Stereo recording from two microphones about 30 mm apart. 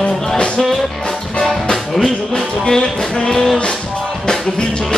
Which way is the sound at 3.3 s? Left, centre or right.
Centre.